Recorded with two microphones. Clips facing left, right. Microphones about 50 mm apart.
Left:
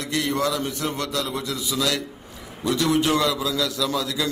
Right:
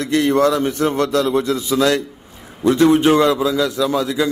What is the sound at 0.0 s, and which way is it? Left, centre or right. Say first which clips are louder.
A man's voice: right 9 dB; right.